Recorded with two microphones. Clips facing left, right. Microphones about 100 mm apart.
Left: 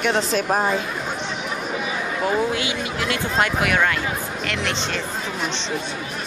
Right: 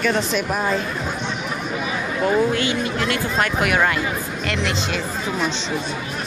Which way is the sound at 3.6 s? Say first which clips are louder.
Right 1 dB; 5° right (ahead or behind).